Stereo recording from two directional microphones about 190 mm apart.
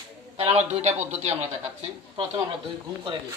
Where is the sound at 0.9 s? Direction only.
10° right (ahead or behind).